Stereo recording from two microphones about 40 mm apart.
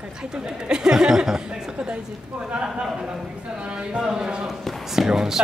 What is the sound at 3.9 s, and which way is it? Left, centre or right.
A man's voice, centre.